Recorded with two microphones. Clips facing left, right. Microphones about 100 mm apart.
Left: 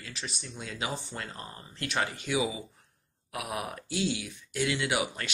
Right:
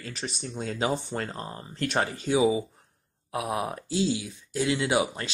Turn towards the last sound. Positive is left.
turn(degrees=-30)  # may be behind; listen again after turning